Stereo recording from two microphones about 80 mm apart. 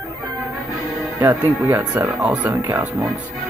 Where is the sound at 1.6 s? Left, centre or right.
Right.